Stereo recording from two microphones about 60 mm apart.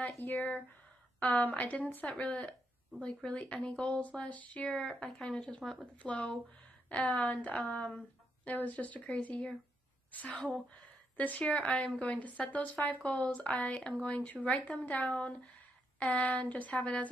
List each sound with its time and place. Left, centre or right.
0.2 s speech: left
4.6 s speech: centre
5.9 s speech: left
11.4 s speech: centre
12.2 s speech: left